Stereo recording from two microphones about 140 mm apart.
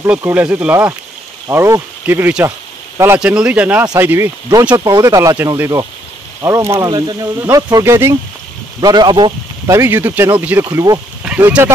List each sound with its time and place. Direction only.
0.0 s speech: 15° right (ahead or behind)
4.7 s speech: 25° right (ahead or behind)
8.8 s speech: 30° right (ahead or behind)
9.7 s speech: 20° right (ahead or behind)
11.2 s speech: 10° right (ahead or behind)